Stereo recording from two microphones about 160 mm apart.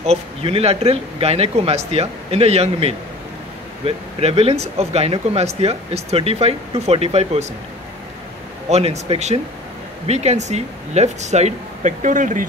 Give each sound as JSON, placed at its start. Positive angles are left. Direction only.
{"t": 0.0, "sound": "speech", "side_deg": -40}
{"t": 8.6, "sound": "speech", "side_deg": -40}